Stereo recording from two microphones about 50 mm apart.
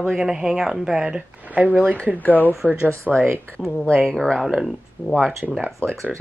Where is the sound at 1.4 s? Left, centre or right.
Right.